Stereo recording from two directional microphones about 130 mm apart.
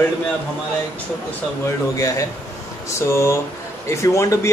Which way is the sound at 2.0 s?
25° left (ahead or behind).